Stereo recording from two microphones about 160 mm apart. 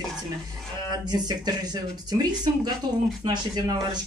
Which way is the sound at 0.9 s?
25° right (ahead or behind).